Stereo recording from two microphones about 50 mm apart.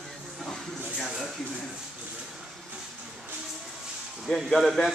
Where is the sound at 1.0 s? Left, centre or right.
Centre.